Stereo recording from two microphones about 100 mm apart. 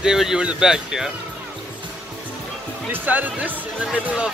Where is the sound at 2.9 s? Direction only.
15° right (ahead or behind).